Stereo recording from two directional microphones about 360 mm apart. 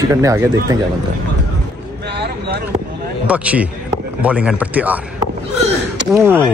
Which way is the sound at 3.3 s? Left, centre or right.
Centre.